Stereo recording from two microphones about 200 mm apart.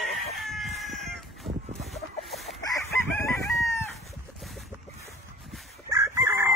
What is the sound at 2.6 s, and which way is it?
Chicken, 15° left (ahead or behind).